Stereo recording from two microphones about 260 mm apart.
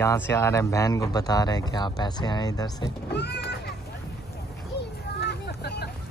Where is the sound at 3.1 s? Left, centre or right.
Left.